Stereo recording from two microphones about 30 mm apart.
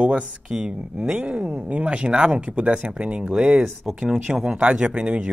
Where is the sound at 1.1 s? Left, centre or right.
Right.